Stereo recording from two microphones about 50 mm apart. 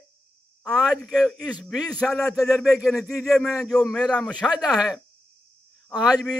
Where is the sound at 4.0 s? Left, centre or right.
Centre.